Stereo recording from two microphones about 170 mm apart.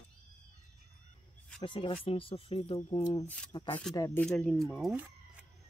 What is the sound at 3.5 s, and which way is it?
Speech, 30° left (ahead or behind).